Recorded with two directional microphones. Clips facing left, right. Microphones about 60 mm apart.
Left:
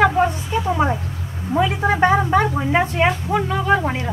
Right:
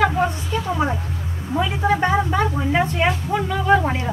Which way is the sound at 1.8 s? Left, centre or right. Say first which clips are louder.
Left 1 dB; left.